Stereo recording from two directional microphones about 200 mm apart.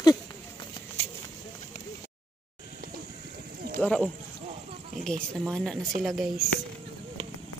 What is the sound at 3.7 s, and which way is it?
Speech, 5° left (ahead or behind).